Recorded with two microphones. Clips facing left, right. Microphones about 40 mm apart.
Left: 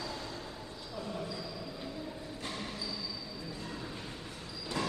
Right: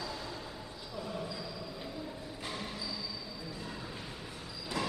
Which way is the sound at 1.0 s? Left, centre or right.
Centre.